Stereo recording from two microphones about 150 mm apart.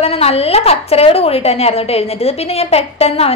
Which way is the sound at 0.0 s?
40° left (ahead or behind).